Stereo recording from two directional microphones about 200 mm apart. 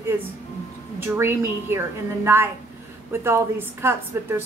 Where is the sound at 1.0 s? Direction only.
10° right (ahead or behind).